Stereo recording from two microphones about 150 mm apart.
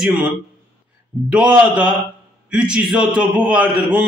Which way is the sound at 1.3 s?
10° right (ahead or behind).